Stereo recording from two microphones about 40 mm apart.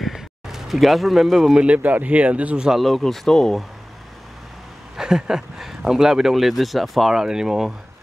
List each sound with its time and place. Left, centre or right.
0.0 s a sound: centre
1.5 s speech: right
1.8 s speech: right
3.0 s speech: centre
4.9 s speech: centre
6.3 s speech: centre